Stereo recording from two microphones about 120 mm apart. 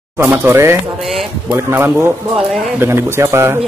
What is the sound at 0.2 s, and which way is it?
Speech, 20° right (ahead or behind).